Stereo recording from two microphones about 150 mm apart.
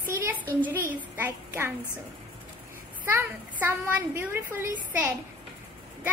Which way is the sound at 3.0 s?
15° right (ahead or behind).